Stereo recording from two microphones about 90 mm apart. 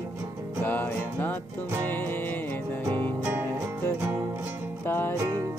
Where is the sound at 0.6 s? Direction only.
25° left (ahead or behind).